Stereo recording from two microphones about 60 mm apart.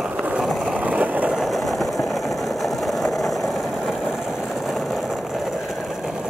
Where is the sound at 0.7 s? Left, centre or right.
Right.